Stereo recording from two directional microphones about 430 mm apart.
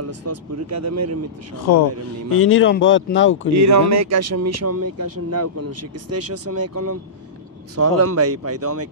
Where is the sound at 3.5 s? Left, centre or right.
Right.